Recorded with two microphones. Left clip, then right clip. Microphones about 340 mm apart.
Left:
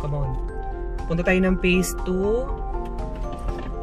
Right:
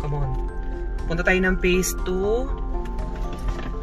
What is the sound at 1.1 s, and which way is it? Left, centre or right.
Speech, centre.